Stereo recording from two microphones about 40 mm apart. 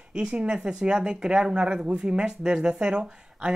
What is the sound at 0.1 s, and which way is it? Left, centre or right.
Speech, right.